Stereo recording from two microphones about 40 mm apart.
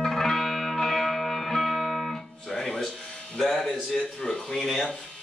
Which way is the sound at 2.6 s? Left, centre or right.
Centre.